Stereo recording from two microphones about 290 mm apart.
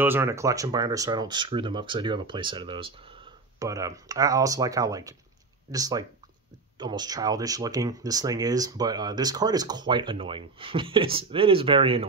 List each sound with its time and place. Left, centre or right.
0.0 s speech: centre